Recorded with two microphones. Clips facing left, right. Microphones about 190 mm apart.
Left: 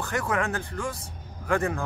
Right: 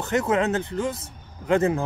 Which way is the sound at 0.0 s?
20° right (ahead or behind).